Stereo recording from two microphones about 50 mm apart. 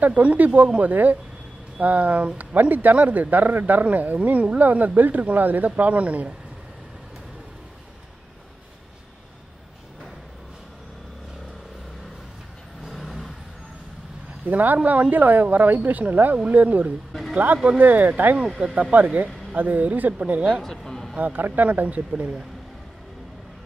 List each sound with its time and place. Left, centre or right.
0.0 s speech: right
12.8 s vehicle: centre
14.5 s speech: right
20.6 s speech: centre
21.2 s speech: right
21.6 s speech: right